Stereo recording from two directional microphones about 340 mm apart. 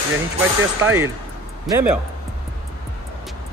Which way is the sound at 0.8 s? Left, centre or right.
Centre.